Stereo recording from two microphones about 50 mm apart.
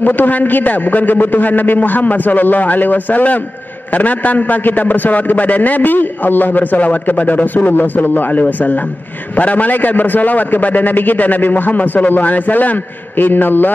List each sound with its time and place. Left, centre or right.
0.0 s a man's voice: left